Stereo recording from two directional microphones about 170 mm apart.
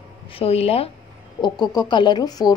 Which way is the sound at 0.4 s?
35° left (ahead or behind).